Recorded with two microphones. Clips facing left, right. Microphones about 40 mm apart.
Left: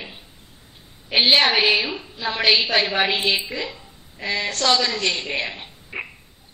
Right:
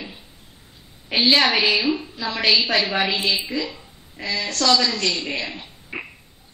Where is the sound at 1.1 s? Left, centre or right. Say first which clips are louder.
Left 1 dB; left.